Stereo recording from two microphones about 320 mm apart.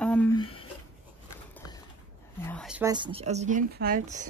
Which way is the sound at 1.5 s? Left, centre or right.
Centre.